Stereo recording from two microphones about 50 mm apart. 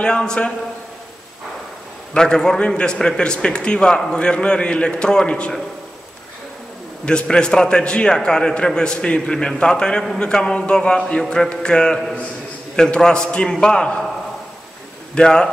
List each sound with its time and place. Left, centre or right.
0.0 s a man's voice: centre
2.1 s a man's voice: centre
7.1 s a man's voice: centre
15.1 s a man's voice: centre